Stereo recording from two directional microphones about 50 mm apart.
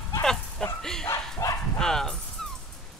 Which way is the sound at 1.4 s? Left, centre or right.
Left.